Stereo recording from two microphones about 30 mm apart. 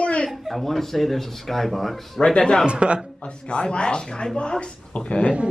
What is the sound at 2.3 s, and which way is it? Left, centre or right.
Speech, left.